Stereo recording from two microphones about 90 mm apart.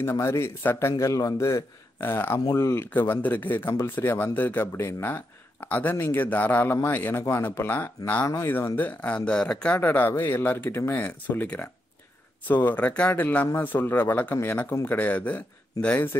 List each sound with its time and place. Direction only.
0.0 s a man's voice: 30° left (ahead or behind); by 9.8 s 10° left (ahead or behind)
9.8 s a man's voice: 20° left (ahead or behind)